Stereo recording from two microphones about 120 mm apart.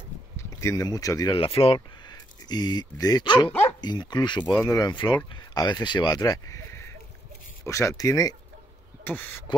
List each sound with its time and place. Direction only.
0.4 s speech: 25° left (ahead or behind)
1.3 s speech: 50° left (ahead or behind); by 8.4 s 30° left (ahead or behind)
9.0 s speech: 15° left (ahead or behind)